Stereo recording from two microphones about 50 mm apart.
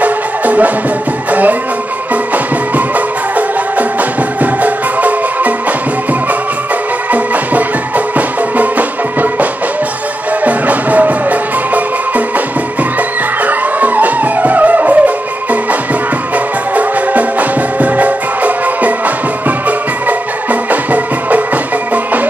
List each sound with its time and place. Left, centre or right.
0.0 s music: right
1.3 s speech: right
4.4 s music: right
7.1 s music: right
13.4 s music: right
16.7 s music: right
20.7 s music: right